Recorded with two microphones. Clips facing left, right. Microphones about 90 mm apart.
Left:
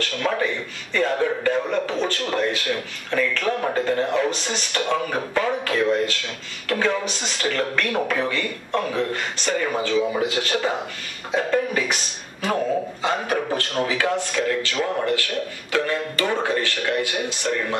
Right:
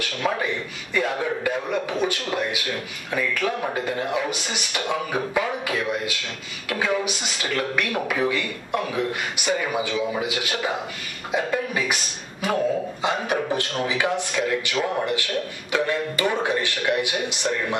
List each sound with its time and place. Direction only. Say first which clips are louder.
0.0 s a sound: left 2 dB; 10° right (ahead or behind)
0.9 s a man's voice: left 3 dB; 10° right (ahead or behind)
13.0 s speech: right 1 dB; 20° right (ahead or behind)